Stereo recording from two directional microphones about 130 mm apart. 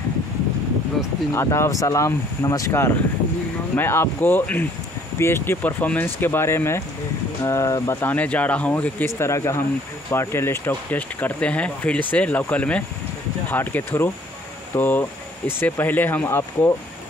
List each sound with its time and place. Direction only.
1.3 s speech: 20° left (ahead or behind)
8.0 s speech: 10° left (ahead or behind)